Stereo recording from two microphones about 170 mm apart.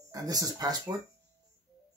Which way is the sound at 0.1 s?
20° right (ahead or behind).